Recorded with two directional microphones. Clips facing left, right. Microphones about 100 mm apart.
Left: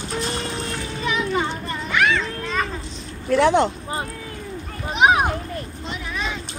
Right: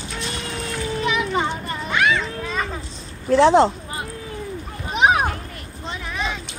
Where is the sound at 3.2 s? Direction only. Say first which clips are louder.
Right 3 dB; 30° right (ahead or behind).